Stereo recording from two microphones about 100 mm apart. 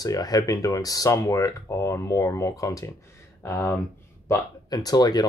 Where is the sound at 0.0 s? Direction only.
40° left (ahead or behind).